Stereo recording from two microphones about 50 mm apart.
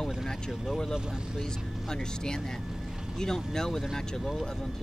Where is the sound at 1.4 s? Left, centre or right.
Centre.